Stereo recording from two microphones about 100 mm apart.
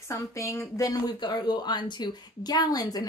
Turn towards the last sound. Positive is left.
turn(degrees=40)  # may be behind; listen again after turning